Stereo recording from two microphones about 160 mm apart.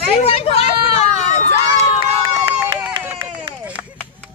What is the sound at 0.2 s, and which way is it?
Hubbub, 40° left (ahead or behind).